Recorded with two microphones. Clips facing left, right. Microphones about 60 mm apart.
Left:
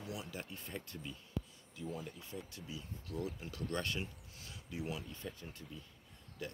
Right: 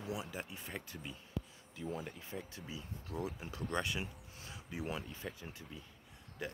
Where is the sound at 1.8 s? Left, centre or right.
Right.